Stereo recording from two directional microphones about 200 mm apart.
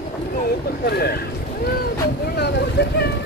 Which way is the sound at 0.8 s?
50° left (ahead or behind).